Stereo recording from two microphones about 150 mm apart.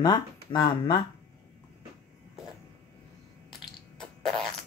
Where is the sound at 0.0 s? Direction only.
30° left (ahead or behind).